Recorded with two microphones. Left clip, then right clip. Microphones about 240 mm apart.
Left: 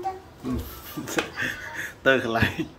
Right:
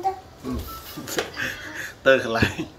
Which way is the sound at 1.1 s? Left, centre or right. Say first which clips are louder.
Even; centre.